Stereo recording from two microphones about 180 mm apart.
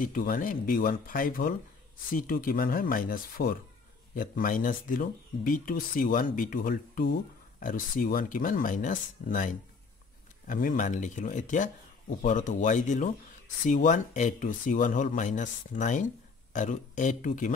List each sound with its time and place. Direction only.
0.0 s speech: 50° left (ahead or behind)